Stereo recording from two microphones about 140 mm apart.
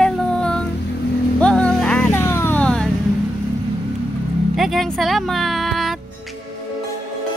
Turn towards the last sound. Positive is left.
turn(degrees=0)  # may be behind; listen again after turning